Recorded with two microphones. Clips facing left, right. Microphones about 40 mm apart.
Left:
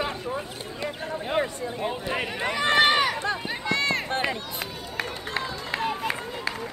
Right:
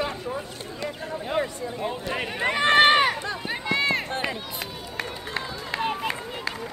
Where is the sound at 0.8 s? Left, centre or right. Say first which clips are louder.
Left 1 dB; left.